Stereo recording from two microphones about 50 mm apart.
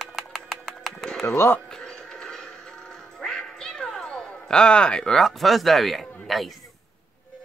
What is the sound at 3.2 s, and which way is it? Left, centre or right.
Cat, centre.